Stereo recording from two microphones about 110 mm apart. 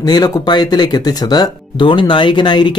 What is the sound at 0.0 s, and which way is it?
Speech, 40° left (ahead or behind).